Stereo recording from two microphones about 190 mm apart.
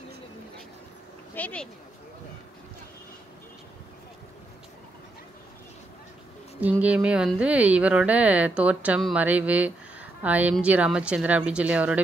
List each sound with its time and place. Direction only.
1.3 s speech: 5° left (ahead or behind)
6.6 s speech: 5° right (ahead or behind)